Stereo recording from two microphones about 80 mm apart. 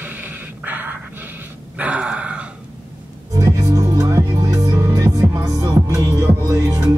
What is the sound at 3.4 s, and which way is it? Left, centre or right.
Music, right.